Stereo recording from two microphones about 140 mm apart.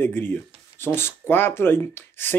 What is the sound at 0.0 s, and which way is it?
Speech, 15° left (ahead or behind).